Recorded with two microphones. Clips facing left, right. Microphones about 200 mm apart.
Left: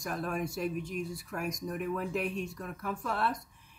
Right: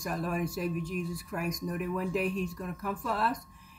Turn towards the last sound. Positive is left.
turn(degrees=0)  # may be behind; listen again after turning